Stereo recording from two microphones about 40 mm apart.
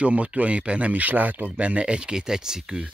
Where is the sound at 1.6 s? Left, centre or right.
Right.